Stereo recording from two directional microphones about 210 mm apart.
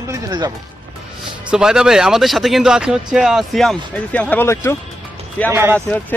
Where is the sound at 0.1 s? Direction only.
20° right (ahead or behind).